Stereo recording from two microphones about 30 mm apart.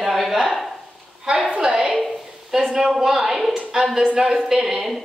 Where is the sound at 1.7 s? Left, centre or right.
Centre.